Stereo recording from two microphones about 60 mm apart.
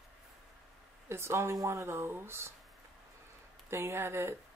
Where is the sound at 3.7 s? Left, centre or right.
Right.